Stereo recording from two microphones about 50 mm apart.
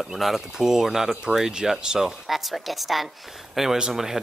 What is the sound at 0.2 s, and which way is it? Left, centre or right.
Speech, centre.